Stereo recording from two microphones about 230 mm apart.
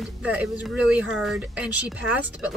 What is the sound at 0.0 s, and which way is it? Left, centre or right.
Speech, centre.